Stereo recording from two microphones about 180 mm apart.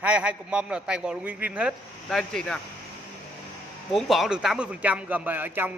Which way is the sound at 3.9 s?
Centre (ahead or behind).